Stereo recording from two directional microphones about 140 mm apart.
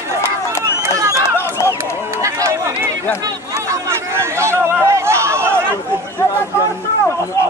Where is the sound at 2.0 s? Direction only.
20° right (ahead or behind).